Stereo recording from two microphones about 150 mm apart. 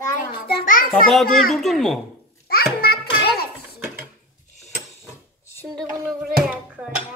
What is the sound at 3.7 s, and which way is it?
Sewing machine, 15° right (ahead or behind).